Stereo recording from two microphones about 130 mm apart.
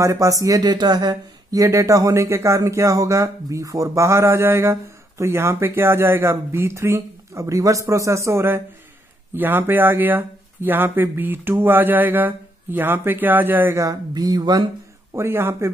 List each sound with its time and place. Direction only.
0.0 s speech: 25° right (ahead or behind)
15.1 s speech: 20° right (ahead or behind)